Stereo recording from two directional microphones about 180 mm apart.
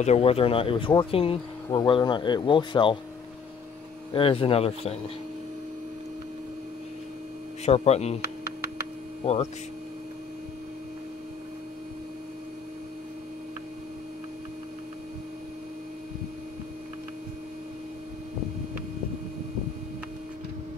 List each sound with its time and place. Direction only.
0.0 s speech: 35° left (ahead or behind)
4.1 s speech: 30° left (ahead or behind)
7.6 s speech: 35° left (ahead or behind)
9.2 s speech: 35° left (ahead or behind)